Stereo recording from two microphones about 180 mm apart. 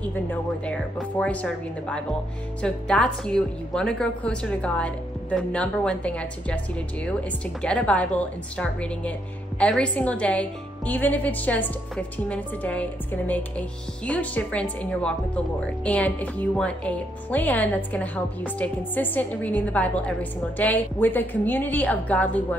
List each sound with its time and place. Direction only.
0.0 s speech: 10° left (ahead or behind)